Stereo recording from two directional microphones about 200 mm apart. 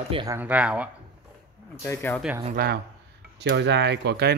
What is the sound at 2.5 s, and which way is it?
A man's voice, 50° right (ahead or behind).